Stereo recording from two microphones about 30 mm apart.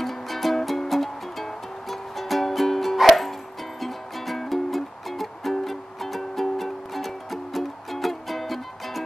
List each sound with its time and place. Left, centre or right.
0.0 s music: centre
4.5 s music: centre